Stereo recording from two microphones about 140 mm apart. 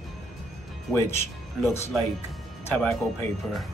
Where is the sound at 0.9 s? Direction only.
Centre (ahead or behind).